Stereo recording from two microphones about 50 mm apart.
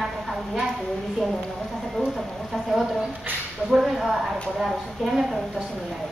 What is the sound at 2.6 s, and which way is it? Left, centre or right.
Speech, centre.